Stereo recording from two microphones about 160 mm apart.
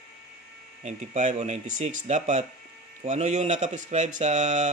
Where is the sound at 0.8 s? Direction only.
45° right (ahead or behind).